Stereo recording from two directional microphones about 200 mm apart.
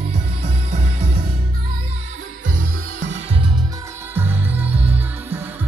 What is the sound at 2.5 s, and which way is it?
Music, 45° right (ahead or behind).